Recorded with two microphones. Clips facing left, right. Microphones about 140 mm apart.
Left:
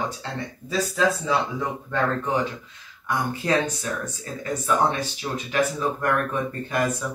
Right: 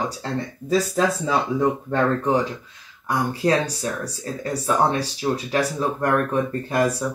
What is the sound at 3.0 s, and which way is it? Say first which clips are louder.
Speech: right 4 dB; 35° right (ahead or behind).